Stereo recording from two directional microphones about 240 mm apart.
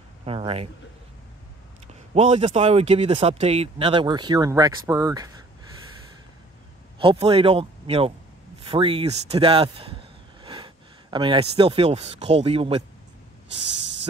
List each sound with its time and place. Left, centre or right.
0.2 s speech: right
2.1 s speech: right
7.0 s speech: right
13.7 s snort: right